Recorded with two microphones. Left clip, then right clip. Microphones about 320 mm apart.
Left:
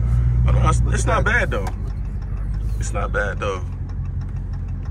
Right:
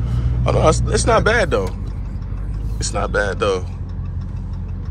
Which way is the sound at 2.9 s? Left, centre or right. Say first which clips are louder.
Right 4 dB; centre.